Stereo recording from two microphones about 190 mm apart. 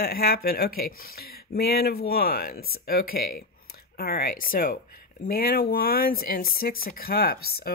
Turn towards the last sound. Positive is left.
turn(degrees=55)  # may be behind; listen again after turning